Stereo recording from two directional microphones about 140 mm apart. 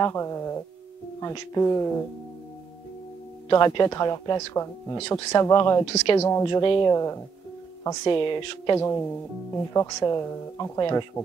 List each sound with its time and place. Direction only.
0.0 s speech: 20° left (ahead or behind)
3.4 s speech: 25° left (ahead or behind)